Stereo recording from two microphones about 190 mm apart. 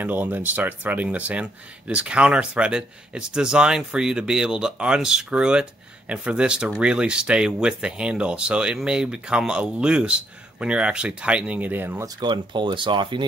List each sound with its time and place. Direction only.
0.0 s speech: 10° right (ahead or behind)
12.2 s speech: 25° right (ahead or behind)